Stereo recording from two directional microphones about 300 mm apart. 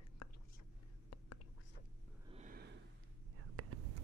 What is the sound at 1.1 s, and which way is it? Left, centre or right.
Whispering, left.